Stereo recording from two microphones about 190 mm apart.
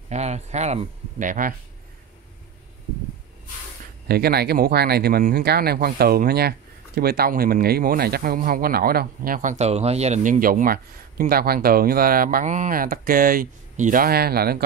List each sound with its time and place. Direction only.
0.1 s speech: 35° right (ahead or behind)
4.1 s speech: 55° right (ahead or behind)